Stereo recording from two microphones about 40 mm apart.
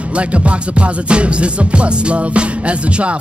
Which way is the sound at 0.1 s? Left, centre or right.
Right.